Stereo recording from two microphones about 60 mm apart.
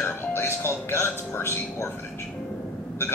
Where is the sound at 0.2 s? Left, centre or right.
Left.